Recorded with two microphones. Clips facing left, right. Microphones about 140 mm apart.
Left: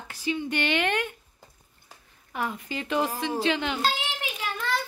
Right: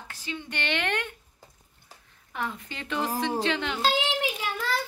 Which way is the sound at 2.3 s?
10° left (ahead or behind).